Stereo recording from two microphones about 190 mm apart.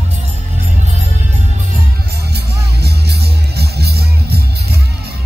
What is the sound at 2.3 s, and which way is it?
Music, 60° right (ahead or behind).